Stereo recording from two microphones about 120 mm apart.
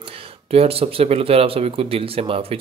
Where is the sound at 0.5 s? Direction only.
55° right (ahead or behind).